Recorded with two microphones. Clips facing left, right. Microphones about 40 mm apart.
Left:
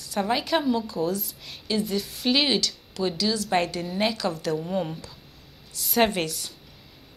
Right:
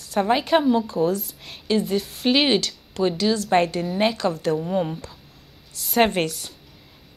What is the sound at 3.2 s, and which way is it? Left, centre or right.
Speech, right.